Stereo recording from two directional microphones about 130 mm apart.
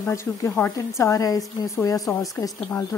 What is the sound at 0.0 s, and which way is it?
A woman's voice, 25° left (ahead or behind).